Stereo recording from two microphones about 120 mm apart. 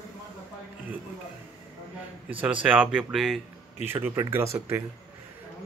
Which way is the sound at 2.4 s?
10° right (ahead or behind).